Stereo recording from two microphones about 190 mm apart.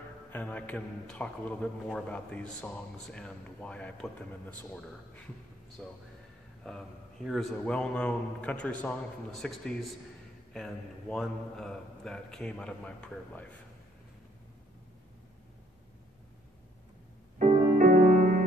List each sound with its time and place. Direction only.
0.3 s a man's voice: 10° left (ahead or behind)
5.8 s a man's voice: 5° left (ahead or behind)
17.4 s music: 45° right (ahead or behind)